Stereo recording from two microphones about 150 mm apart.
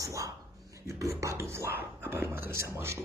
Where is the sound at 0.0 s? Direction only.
20° right (ahead or behind).